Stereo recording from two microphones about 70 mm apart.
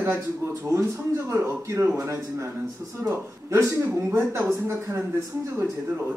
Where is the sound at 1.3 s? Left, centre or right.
Right.